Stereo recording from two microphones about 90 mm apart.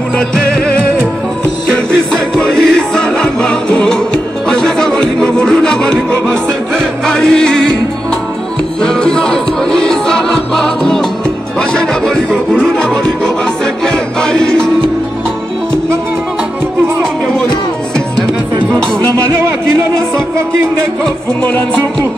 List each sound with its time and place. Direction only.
0.3 s music: 5° left (ahead or behind)
2.1 s music: 5° left (ahead or behind)
8.8 s music: 10° left (ahead or behind)
17.0 s music: 5° left (ahead or behind)
18.7 s music: 10° left (ahead or behind)
21.4 s music: 20° left (ahead or behind)